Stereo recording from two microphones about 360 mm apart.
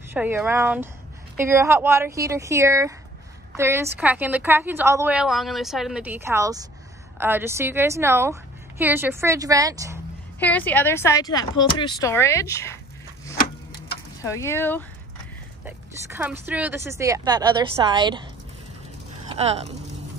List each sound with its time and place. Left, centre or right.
0.1 s a woman's voice: centre
10.4 s speech: centre
14.2 s a woman's voice: centre
19.2 s speech: centre